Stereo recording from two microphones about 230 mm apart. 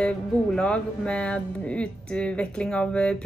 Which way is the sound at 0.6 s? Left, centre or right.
Centre.